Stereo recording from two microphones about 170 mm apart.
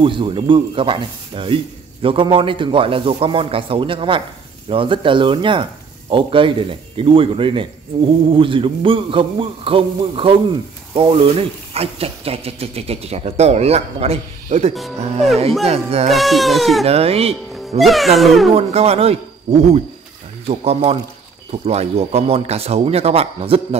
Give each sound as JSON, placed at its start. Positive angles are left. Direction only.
{"t": 0.0, "sound": "a man's voice", "side_deg": -30}
{"t": 16.1, "sound": "speech", "side_deg": 0}
{"t": 16.8, "sound": "a man's voice", "side_deg": -35}
{"t": 17.7, "sound": "speech", "side_deg": 0}
{"t": 18.5, "sound": "a man's voice", "side_deg": -40}